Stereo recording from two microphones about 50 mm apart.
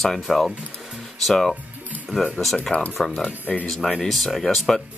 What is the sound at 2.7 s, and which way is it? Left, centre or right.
Speech, left.